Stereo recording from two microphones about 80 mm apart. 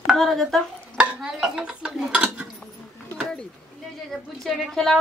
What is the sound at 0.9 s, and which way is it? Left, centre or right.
A child's voice, centre.